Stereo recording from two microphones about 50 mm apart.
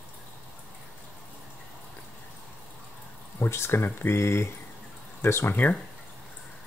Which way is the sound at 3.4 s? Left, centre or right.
Left.